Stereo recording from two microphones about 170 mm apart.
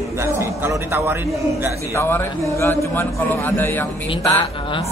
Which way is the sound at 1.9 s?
15° left (ahead or behind).